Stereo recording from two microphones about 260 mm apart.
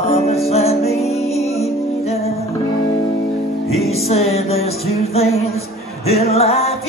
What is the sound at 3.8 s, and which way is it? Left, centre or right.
Music, left.